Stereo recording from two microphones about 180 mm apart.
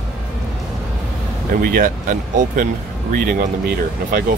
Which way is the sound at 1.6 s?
50° right (ahead or behind).